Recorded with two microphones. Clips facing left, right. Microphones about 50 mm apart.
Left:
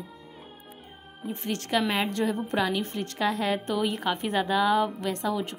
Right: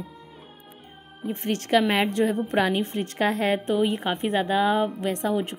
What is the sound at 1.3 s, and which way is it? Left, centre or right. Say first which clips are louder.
Speech: right 6 dB; right.